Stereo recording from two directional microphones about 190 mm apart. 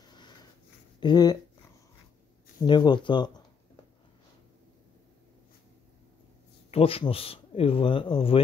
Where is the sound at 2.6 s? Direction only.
25° left (ahead or behind).